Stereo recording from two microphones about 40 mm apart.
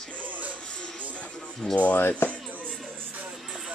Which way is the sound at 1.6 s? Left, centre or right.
Left.